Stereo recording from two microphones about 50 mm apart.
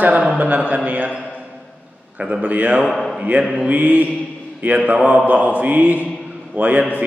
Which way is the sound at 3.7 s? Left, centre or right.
Right.